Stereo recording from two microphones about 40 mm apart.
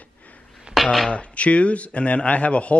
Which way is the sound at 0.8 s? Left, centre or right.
Centre.